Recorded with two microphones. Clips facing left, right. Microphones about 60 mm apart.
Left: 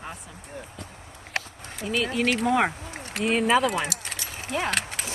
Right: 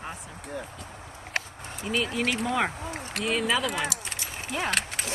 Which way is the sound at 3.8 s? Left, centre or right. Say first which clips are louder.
Even; left.